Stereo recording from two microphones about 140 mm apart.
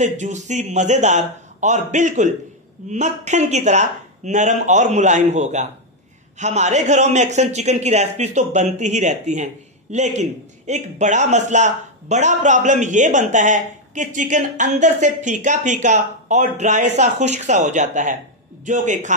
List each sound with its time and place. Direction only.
0.0 s a man's voice: 60° right (ahead or behind)